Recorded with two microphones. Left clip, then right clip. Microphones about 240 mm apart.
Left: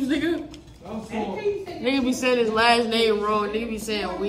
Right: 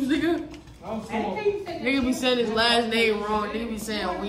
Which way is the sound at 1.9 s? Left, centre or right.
Centre.